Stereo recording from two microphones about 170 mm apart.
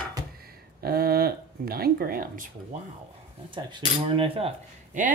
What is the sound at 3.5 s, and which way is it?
Cutlery, 25° right (ahead or behind).